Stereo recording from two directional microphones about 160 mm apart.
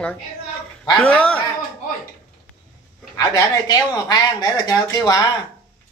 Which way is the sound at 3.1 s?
25° left (ahead or behind).